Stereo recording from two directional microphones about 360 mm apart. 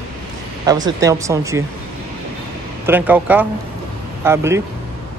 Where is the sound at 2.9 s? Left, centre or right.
Centre.